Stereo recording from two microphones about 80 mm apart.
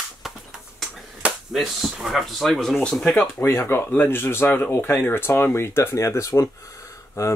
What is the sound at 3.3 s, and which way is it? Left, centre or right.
Speech, left.